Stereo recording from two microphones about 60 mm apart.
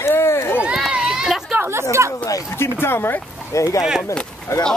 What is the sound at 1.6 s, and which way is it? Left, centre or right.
Speech, right.